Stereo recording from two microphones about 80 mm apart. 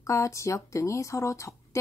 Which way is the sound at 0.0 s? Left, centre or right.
Left.